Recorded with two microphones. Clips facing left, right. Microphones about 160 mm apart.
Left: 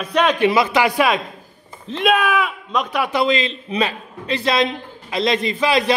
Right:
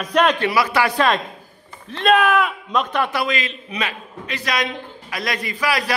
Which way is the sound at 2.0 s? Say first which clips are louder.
Right 2 dB; 10° left (ahead or behind).